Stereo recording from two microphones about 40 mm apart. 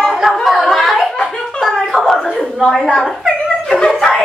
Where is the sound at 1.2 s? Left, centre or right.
Centre.